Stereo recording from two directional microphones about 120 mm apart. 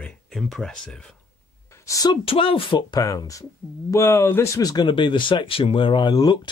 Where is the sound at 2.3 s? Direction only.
50° left (ahead or behind).